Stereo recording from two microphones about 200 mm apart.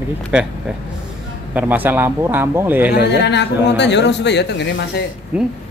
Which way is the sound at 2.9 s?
60° left (ahead or behind).